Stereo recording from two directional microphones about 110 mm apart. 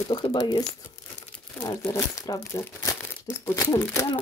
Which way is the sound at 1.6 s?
25° left (ahead or behind).